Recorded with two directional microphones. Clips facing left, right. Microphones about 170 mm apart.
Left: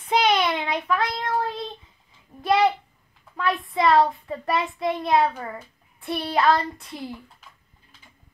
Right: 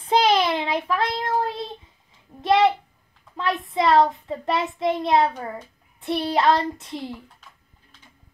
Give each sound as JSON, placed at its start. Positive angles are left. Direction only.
{"t": 0.0, "sound": "child singing", "side_deg": -30}
{"t": 2.4, "sound": "a sound", "side_deg": -25}
{"t": 3.7, "sound": "a child's voice", "side_deg": -25}